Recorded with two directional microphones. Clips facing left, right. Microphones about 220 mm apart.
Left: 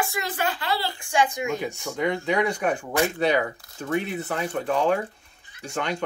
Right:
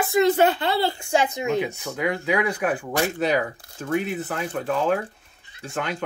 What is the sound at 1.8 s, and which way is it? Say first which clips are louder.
Speech: even; 5° right (ahead or behind).